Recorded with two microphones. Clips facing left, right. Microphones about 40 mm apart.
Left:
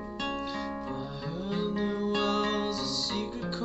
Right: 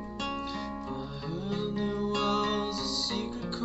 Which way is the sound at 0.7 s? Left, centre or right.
Centre.